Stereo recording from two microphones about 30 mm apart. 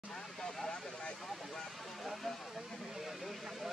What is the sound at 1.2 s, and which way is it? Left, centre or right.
Speech, centre.